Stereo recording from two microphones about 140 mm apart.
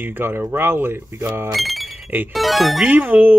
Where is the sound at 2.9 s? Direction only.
15° right (ahead or behind).